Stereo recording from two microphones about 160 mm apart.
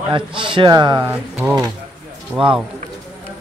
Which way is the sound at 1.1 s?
10° right (ahead or behind).